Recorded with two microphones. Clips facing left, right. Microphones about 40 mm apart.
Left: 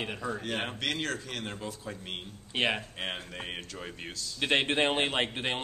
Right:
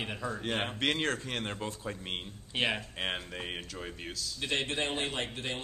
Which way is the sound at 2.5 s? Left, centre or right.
Centre.